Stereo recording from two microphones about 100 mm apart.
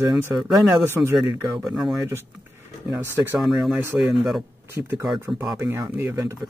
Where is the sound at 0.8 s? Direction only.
25° right (ahead or behind).